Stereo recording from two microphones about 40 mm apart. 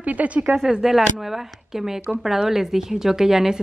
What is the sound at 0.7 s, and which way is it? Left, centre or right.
A woman's voice, centre.